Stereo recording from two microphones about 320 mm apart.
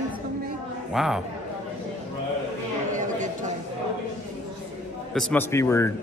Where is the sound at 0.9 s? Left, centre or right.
Centre.